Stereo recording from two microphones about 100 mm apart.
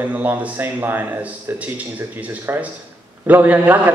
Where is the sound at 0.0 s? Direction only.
20° right (ahead or behind).